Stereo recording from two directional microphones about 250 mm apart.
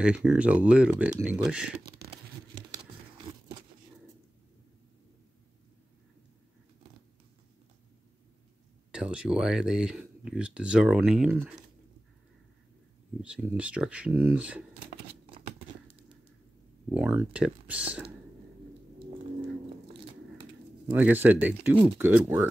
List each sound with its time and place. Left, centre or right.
0.0 s speech: centre
1.8 s a sound: right
8.9 s speech: centre
13.2 s speech: centre
16.9 s speech: centre
20.9 s speech: centre